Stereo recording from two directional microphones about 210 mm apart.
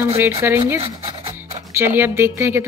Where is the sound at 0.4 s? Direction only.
10° right (ahead or behind).